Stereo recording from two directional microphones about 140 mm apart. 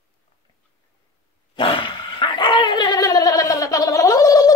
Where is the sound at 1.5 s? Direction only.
35° left (ahead or behind).